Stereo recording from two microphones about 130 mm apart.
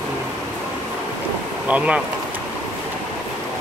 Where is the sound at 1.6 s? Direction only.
10° right (ahead or behind).